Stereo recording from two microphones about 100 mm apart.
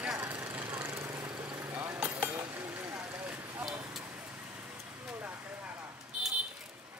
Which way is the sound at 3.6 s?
5° right (ahead or behind).